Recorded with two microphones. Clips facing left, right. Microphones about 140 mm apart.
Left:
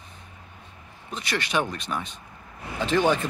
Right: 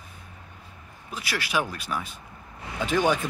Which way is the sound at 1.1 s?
5° right (ahead or behind).